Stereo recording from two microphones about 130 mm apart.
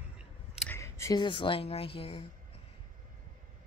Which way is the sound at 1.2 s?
40° left (ahead or behind).